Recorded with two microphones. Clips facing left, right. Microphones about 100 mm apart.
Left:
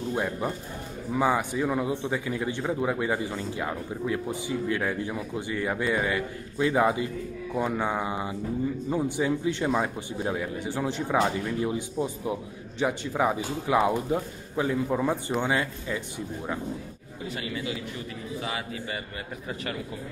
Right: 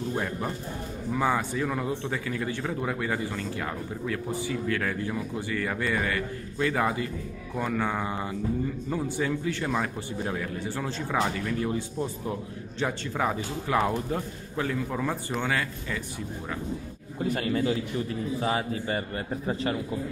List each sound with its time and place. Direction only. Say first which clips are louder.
0.1 s a man's voice: left 5 dB; 10° left (ahead or behind)
17.2 s a man's voice: right 7 dB; 50° right (ahead or behind); by 19.8 s 30° right (ahead or behind)